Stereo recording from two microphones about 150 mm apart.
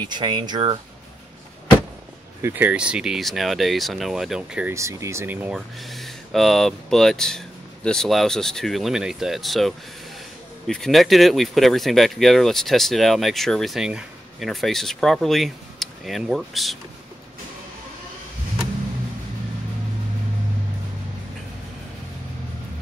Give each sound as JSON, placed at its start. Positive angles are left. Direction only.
{"t": 0.0, "sound": "speech", "side_deg": -30}
{"t": 2.4, "sound": "speech", "side_deg": -10}
{"t": 4.7, "sound": "speech", "side_deg": -20}
{"t": 5.8, "sound": "speech", "side_deg": 0}